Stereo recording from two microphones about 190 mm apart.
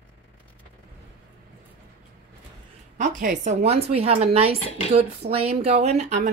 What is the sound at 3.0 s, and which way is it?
Speech, 40° right (ahead or behind).